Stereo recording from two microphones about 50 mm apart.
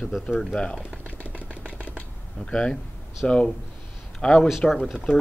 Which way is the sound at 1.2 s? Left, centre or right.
Right.